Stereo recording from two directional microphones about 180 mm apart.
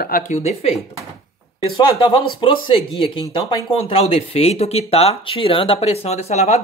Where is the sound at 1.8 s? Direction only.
30° left (ahead or behind).